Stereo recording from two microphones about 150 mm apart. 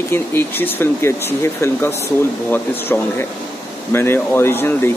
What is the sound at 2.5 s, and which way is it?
Speech, 15° left (ahead or behind).